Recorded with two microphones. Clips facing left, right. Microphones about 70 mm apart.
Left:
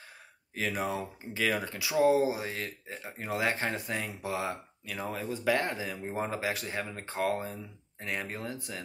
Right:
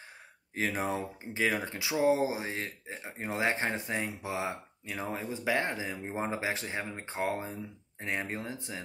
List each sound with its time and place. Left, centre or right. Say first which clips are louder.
0.6 s speech: right 1 dB; right
1.4 s speech: even; centre